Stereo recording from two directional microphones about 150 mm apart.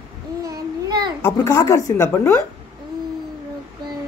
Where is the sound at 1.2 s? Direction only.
20° left (ahead or behind).